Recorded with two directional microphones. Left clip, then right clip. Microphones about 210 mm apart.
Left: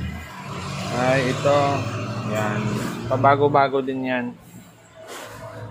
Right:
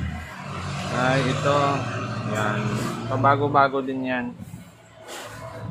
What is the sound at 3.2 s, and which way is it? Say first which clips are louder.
Speech: left 2 dB; 20° left (ahead or behind).